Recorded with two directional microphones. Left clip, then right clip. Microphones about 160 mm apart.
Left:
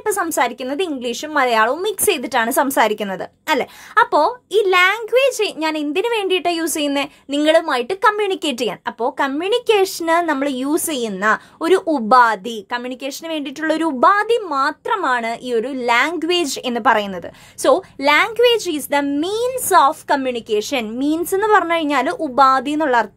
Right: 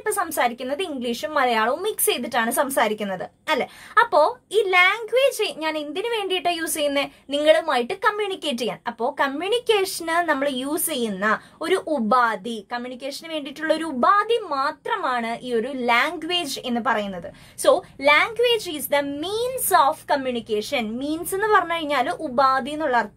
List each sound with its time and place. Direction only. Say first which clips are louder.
0.0 s a woman's voice: left 4 dB; 30° left (ahead or behind)
17.6 s a woman's voice: left 3 dB; 35° left (ahead or behind)